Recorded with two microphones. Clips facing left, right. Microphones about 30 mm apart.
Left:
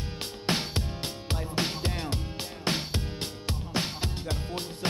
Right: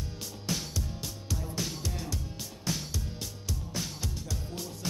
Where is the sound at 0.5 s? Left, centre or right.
Left.